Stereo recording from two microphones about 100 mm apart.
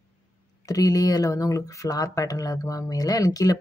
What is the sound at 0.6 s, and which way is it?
Speech, 35° left (ahead or behind).